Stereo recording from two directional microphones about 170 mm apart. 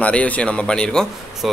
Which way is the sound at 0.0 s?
10° left (ahead or behind).